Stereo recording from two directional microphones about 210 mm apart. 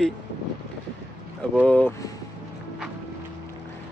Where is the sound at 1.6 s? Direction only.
5° left (ahead or behind).